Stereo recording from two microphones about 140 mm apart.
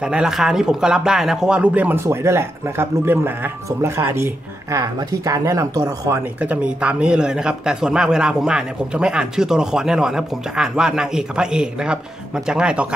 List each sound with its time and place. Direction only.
0.0 s speech: 5° right (ahead or behind); by 6.2 s 20° right (ahead or behind)
6.4 s speech: 10° right (ahead or behind)